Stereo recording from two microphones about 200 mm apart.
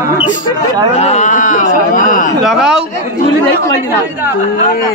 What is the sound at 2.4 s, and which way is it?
Speech, centre (ahead or behind).